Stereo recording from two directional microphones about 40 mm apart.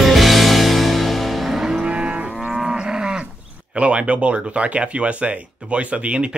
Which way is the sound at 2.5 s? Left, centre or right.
Centre.